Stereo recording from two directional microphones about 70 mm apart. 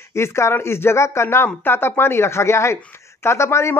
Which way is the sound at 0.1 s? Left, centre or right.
Left.